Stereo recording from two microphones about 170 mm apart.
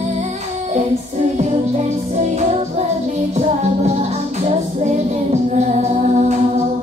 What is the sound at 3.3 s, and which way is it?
Music, 40° right (ahead or behind).